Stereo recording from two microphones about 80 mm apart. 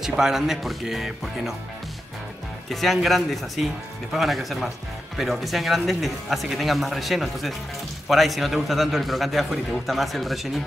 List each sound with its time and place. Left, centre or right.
0.0 s a man's voice: centre
2.7 s a man's voice: centre